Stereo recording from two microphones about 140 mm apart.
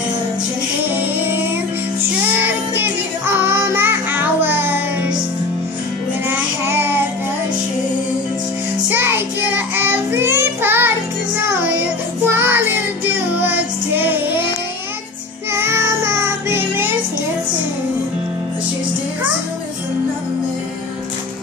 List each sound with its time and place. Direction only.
0.8 s singing: 15° right (ahead or behind)
2.0 s music: 15° right (ahead or behind)
6.2 s child singing: 15° right (ahead or behind)
8.8 s child singing: 15° right (ahead or behind)
13.4 s music: 15° right (ahead or behind)
15.5 s child singing: 15° right (ahead or behind)